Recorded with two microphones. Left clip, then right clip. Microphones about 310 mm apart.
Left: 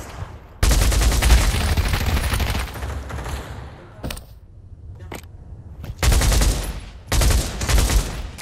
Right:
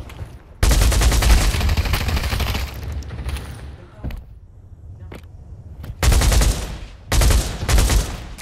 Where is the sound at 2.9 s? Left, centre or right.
Left.